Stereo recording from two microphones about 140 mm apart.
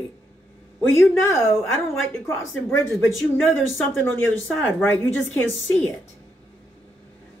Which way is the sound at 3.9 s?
15° left (ahead or behind).